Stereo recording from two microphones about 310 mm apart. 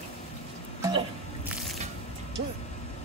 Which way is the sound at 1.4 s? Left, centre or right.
Centre.